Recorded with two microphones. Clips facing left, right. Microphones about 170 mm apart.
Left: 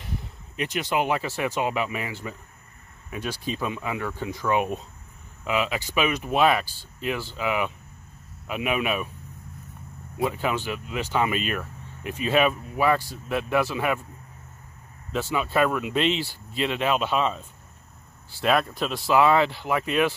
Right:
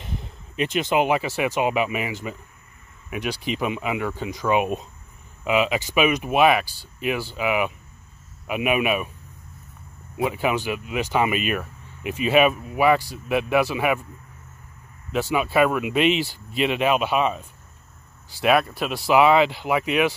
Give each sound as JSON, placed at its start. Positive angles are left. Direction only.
{"t": 0.0, "sound": "speech", "side_deg": -20}
{"t": 10.1, "sound": "speech", "side_deg": -10}
{"t": 15.1, "sound": "speech", "side_deg": -10}